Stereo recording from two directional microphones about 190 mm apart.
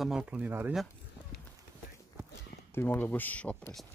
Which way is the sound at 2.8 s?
10° left (ahead or behind).